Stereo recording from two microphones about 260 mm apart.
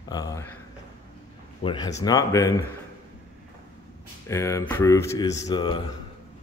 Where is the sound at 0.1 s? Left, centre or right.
Centre.